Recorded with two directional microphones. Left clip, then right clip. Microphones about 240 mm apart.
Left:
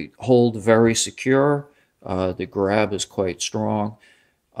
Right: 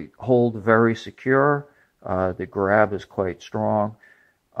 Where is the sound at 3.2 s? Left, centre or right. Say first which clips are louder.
Even; left.